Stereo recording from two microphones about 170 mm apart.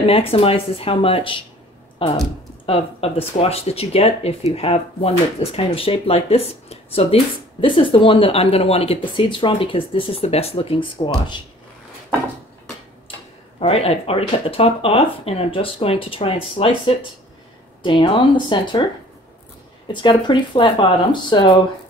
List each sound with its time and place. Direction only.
0.0 s speech: 35° left (ahead or behind)
2.6 s speech: 35° left (ahead or behind)
13.6 s speech: 35° left (ahead or behind)
19.9 s speech: 30° left (ahead or behind)